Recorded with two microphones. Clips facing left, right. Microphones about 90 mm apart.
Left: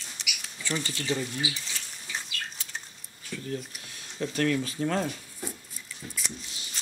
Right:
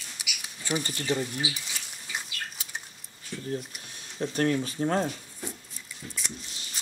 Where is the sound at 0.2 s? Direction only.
10° right (ahead or behind).